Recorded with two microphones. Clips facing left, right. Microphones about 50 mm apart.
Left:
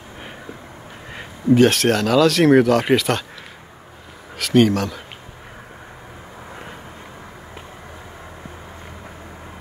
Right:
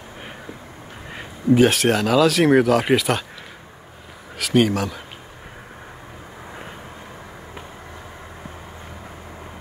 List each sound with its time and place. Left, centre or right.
1.1 s speech: centre
4.4 s speech: centre